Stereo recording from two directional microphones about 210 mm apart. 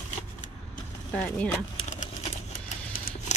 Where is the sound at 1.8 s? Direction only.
35° left (ahead or behind).